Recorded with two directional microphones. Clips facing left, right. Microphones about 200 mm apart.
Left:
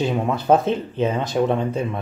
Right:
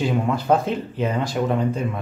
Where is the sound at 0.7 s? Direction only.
20° left (ahead or behind).